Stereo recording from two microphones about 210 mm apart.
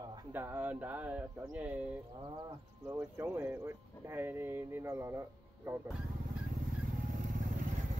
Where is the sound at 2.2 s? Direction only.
20° right (ahead or behind).